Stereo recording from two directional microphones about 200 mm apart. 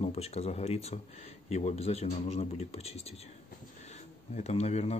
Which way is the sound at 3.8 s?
35° left (ahead or behind).